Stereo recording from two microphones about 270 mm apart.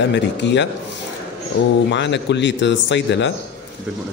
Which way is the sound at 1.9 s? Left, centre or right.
Left.